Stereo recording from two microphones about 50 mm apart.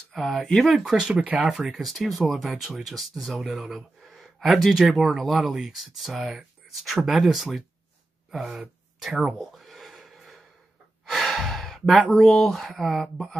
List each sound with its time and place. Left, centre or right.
0.1 s speech: centre
0.7 s speech: centre
1.0 s speech: right
1.7 s speech: centre
8.5 s a sound: centre
11.1 s speech: centre